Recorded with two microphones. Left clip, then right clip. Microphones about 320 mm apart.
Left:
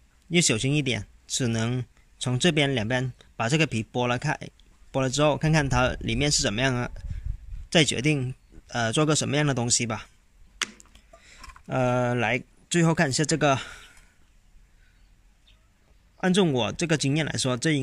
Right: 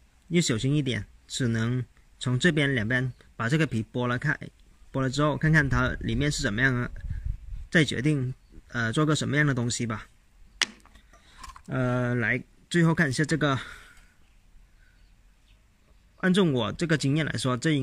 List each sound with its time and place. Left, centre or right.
0.3 s speech: centre
11.6 s speech: centre
16.2 s speech: centre